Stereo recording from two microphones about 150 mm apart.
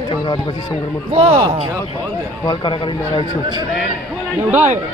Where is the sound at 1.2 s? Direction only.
45° right (ahead or behind).